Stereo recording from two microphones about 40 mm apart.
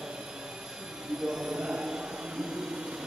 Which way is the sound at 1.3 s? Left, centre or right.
Centre.